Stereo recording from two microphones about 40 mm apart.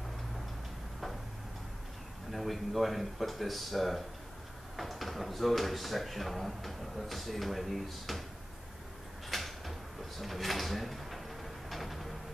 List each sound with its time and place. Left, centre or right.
2.3 s speech: centre
9.3 s drawer open or close: centre